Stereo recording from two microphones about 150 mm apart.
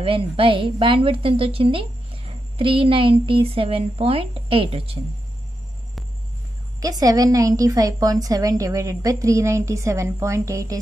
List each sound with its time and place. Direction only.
0.0 s a woman's voice: 35° right (ahead or behind)
6.8 s a woman's voice: 25° right (ahead or behind)